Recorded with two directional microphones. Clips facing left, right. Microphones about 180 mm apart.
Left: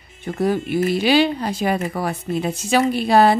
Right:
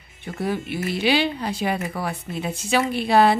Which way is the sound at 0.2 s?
45° left (ahead or behind).